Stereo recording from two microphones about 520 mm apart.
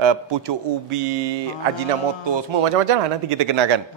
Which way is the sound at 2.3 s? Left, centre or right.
Right.